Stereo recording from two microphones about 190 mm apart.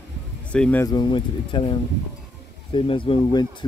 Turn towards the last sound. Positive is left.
turn(degrees=25)  # may be behind; listen again after turning